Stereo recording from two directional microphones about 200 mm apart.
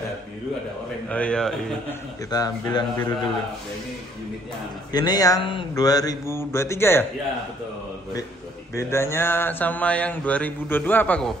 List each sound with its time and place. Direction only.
1.0 s speech: 5° left (ahead or behind)
2.3 s speech: 20° left (ahead or behind)
4.9 s speech: 20° left (ahead or behind)
8.7 s speech: 15° left (ahead or behind)